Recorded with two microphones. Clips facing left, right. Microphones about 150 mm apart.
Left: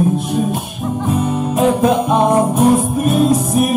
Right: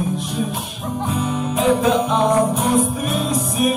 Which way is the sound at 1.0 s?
45° left (ahead or behind).